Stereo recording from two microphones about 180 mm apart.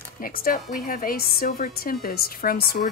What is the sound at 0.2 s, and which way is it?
A woman's voice, 50° left (ahead or behind).